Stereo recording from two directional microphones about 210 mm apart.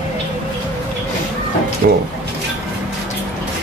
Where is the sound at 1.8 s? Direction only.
45° right (ahead or behind).